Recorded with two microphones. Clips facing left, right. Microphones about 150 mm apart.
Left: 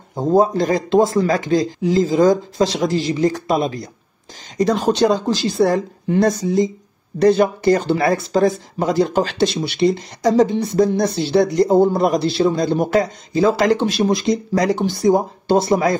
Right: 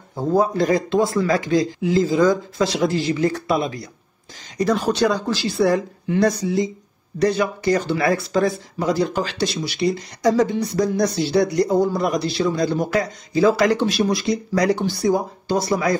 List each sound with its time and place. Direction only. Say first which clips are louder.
0.1 s speech: left 4 dB; 20° left (ahead or behind)
1.8 s speech: left 3 dB; 40° left (ahead or behind)
2.6 s speech: even; 30° left (ahead or behind)
5.3 s speech: left 2 dB; 45° left (ahead or behind)
8.9 s speech: left 7 dB; 20° left (ahead or behind)